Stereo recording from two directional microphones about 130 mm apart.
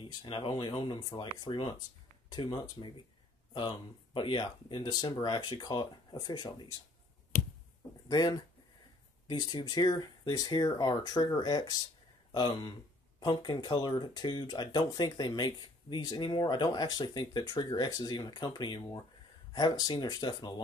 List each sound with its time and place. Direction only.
0.0 s speech: 35° left (ahead or behind)
8.1 s speech: 30° left (ahead or behind)